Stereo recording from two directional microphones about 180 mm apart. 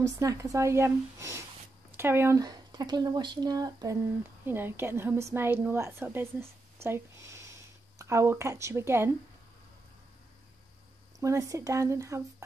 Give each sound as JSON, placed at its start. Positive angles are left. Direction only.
{"t": 0.0, "sound": "a woman's voice", "side_deg": -20}
{"t": 11.1, "sound": "a woman's voice", "side_deg": -20}